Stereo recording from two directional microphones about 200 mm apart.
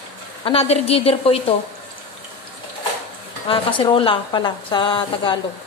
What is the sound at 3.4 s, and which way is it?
A woman's voice, 25° left (ahead or behind).